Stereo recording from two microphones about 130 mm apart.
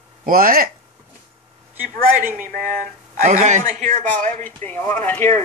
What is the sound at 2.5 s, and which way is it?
Speech, 10° left (ahead or behind).